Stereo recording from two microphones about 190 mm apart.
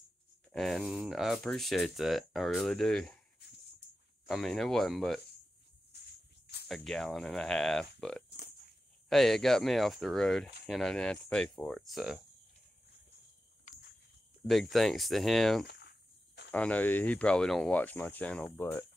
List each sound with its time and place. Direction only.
0.5 s speech: centre (ahead or behind)
4.3 s speech: centre (ahead or behind)
6.4 s cricket: 60° left (ahead or behind)
6.7 s speech: centre (ahead or behind)
9.1 s speech: centre (ahead or behind)
14.5 s speech: centre (ahead or behind)
15.6 s cricket: 55° left (ahead or behind)
16.5 s speech: 5° left (ahead or behind)